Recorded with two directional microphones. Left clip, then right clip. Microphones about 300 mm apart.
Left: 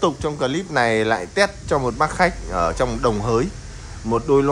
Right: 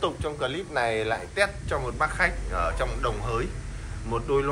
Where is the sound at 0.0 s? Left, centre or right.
Left.